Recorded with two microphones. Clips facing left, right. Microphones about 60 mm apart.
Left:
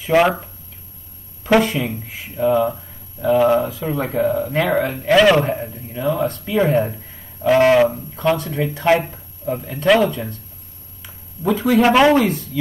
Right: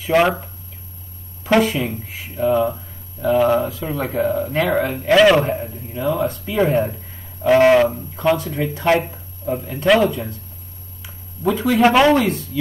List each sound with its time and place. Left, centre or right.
0.0 s speech: centre
1.4 s speech: centre
11.4 s a man's voice: centre
11.8 s speech: centre